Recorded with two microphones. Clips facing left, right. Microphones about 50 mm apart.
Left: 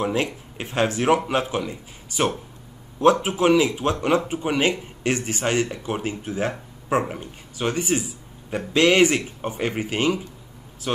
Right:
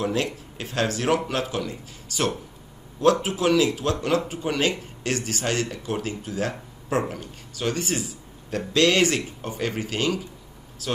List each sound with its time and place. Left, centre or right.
0.0 s speech: left